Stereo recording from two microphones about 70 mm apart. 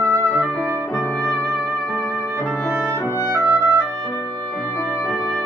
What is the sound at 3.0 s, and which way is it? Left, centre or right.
Music, left.